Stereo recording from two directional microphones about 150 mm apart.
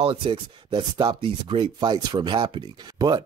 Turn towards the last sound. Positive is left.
turn(degrees=-25)  # may be behind; listen again after turning